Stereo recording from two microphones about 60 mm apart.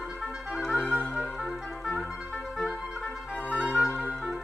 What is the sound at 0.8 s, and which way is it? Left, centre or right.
Music, left.